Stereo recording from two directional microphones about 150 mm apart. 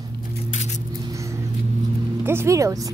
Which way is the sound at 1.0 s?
20° right (ahead or behind).